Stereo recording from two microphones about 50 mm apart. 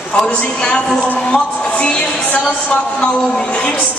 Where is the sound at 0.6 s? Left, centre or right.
Centre.